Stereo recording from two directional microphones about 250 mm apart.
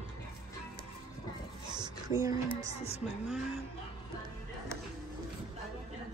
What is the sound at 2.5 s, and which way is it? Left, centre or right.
Speech, left.